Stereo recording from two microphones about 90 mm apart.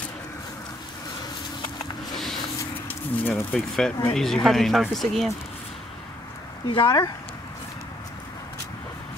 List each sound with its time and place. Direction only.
2.1 s a sound: centre (ahead or behind)
2.9 s bird: 25° left (ahead or behind)
3.5 s speech: 5° left (ahead or behind)
6.7 s speech: 55° left (ahead or behind)